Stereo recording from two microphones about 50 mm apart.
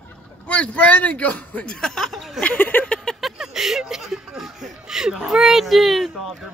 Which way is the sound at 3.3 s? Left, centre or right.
Centre.